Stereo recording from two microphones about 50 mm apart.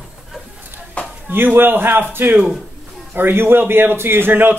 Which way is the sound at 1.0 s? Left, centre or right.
Left.